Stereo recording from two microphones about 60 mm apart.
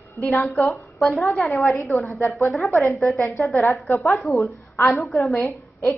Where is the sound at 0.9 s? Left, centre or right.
Centre.